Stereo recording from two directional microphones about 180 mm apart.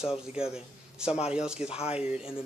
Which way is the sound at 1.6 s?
35° left (ahead or behind).